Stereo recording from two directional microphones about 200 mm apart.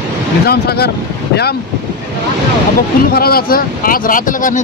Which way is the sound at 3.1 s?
50° left (ahead or behind).